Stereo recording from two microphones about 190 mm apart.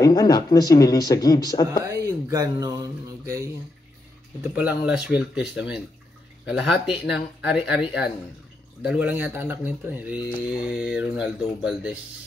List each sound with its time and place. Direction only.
0.0 s speech: 20° left (ahead or behind)
2.2 s speech: 20° right (ahead or behind)